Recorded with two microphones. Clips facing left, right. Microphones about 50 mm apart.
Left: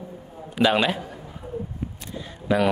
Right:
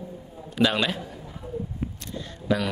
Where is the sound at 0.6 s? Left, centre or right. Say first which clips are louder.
Left 3 dB; centre.